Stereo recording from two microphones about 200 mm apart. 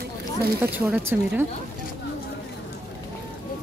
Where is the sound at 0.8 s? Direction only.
10° right (ahead or behind).